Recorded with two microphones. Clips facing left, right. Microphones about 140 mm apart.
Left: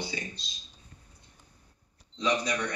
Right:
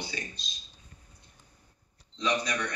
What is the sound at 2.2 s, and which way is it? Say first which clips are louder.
Speech: left 1 dB; 25° left (ahead or behind).